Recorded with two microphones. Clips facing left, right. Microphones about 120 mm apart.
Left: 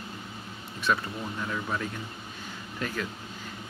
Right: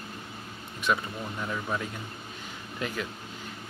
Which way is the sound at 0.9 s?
15° right (ahead or behind).